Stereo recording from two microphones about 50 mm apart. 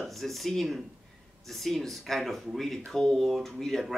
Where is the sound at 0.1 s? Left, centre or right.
Centre.